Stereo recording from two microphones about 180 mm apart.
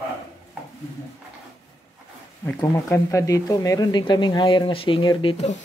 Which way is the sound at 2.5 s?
15° left (ahead or behind).